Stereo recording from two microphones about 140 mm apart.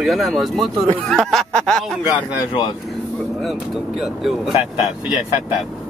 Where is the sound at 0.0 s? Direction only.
Centre (ahead or behind).